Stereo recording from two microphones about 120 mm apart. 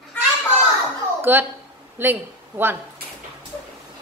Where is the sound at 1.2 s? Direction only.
15° right (ahead or behind).